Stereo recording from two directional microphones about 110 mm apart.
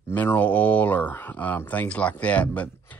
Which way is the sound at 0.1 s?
15° left (ahead or behind).